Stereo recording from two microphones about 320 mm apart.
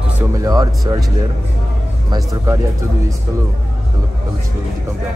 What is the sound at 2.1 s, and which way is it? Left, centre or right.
Speech, centre.